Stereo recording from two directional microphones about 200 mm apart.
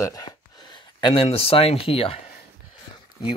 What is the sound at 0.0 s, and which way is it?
Speech, 20° left (ahead or behind).